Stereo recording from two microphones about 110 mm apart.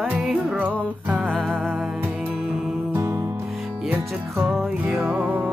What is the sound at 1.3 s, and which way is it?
Music, 5° left (ahead or behind).